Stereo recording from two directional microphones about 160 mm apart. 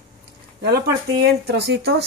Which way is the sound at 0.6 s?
85° right.